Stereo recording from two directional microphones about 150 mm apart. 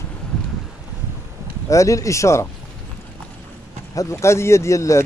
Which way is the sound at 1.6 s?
20° left (ahead or behind).